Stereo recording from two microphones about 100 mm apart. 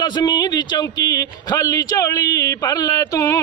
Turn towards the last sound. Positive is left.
turn(degrees=40)  # may be behind; listen again after turning